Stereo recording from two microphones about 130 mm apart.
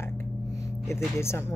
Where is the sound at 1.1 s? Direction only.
20° left (ahead or behind).